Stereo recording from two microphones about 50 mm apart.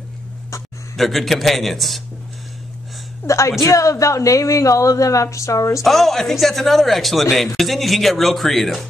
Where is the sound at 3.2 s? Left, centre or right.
Left.